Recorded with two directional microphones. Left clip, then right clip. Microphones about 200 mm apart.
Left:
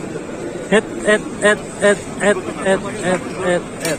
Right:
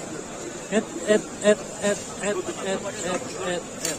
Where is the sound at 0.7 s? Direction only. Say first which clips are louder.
Left 8 dB; 15° left (ahead or behind).